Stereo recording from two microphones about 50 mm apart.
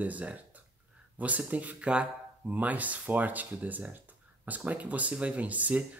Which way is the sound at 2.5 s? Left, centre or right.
Right.